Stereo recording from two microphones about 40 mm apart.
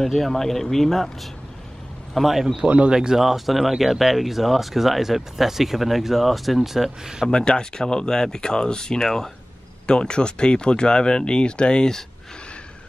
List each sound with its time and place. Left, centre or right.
0.0 s speech: centre
2.1 s speech: centre
2.7 s speech: right
3.2 s speech: centre
7.2 s speech: centre
9.8 s speech: left